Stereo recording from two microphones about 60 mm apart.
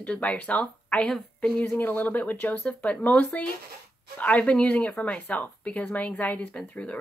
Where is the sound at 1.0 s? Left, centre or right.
Centre.